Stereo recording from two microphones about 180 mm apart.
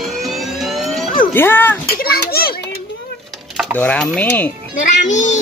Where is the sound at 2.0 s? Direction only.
60° left (ahead or behind).